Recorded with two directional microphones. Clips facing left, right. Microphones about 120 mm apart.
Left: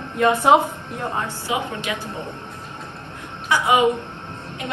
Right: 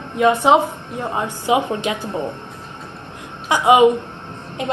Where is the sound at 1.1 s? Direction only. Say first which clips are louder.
Right 8 dB; 15° right (ahead or behind).